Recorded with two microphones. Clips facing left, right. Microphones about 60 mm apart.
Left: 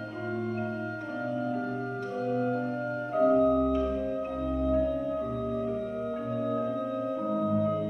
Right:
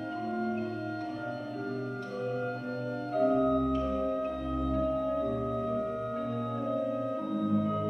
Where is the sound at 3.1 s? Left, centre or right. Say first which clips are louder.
Left 3 dB; left.